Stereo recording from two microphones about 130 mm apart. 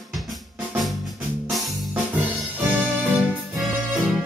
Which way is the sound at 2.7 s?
10° right (ahead or behind).